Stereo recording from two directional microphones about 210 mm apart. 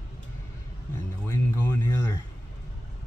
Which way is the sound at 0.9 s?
10° left (ahead or behind).